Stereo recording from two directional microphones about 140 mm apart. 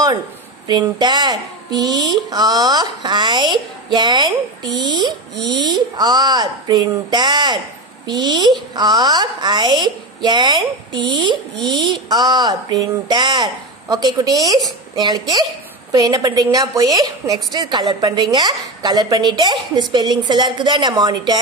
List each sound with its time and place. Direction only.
0.7 s a woman's voice: 30° right (ahead or behind)